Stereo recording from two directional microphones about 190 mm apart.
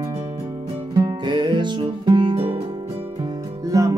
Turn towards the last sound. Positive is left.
turn(degrees=-20)  # may be behind; listen again after turning